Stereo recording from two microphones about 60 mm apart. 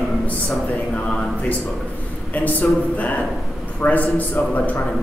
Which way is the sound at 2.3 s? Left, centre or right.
Left.